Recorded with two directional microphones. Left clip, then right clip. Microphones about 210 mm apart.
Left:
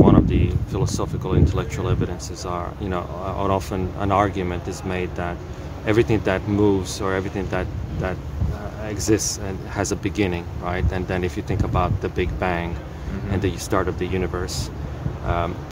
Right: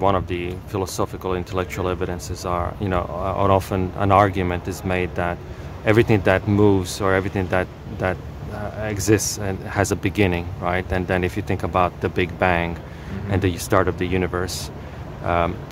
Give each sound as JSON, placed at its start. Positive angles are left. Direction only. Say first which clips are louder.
{"t": 0.0, "sound": "speech", "louder": "left 3 dB", "side_deg": -45}